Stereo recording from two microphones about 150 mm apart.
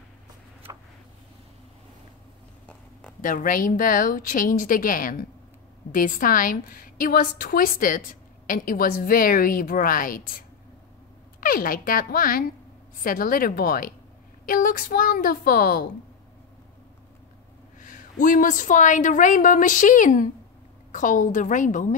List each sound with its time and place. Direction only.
3.2 s a woman's voice: 65° left (ahead or behind)
11.4 s a woman's voice: 70° left (ahead or behind)
17.7 s a woman's voice: 60° left (ahead or behind)